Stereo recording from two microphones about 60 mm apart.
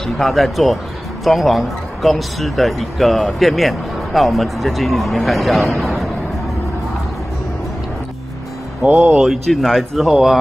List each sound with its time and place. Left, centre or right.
0.0 s speech: centre
5.8 s a sound: centre
8.8 s speech: right
9.1 s speech: centre